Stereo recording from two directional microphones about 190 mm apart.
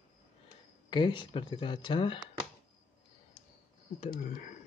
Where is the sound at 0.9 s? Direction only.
25° left (ahead or behind).